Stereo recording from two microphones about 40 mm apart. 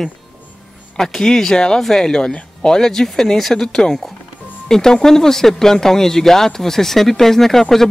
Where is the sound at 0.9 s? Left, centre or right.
Centre.